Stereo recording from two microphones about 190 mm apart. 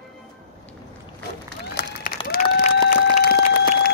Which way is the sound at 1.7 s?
50° left (ahead or behind).